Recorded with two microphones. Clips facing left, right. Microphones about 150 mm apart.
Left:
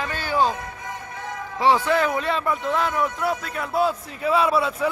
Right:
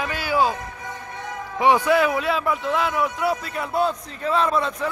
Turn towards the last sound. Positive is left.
turn(degrees=5)  # may be behind; listen again after turning